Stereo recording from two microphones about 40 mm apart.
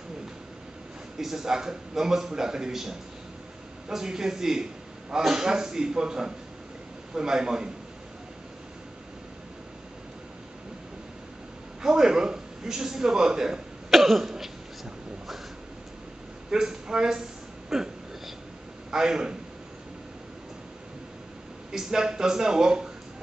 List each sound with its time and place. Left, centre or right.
1.1 s a man's voice: centre
11.8 s a man's voice: centre
13.8 s cough: centre
16.4 s a sound: centre
18.9 s a man's voice: centre
21.7 s a man's voice: centre